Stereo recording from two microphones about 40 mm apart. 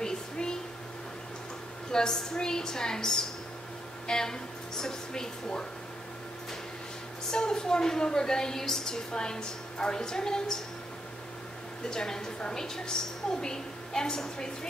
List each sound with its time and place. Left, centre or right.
0.0 s a sound: centre
1.9 s a woman's voice: centre
7.2 s a woman's voice: centre
11.9 s a woman's voice: centre